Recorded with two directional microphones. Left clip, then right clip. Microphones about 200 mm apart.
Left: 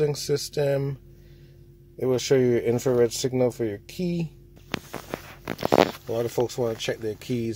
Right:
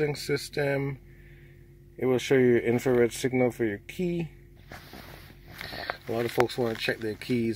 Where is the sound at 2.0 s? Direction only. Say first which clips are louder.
Left 2 dB; 15° left (ahead or behind).